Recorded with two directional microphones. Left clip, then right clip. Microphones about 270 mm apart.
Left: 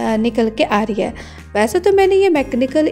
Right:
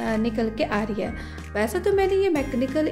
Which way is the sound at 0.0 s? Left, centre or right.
Left.